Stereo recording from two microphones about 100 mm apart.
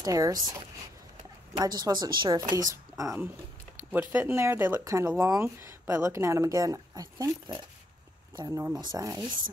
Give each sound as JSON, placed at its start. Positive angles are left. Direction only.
{"t": 0.0, "sound": "speech", "side_deg": -35}
{"t": 3.9, "sound": "speech", "side_deg": -20}
{"t": 8.4, "sound": "speech", "side_deg": -35}